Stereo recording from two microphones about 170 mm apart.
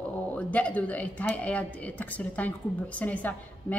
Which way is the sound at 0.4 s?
10° left (ahead or behind).